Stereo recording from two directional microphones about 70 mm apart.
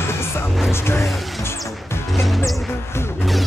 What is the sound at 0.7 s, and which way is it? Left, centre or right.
Music, left.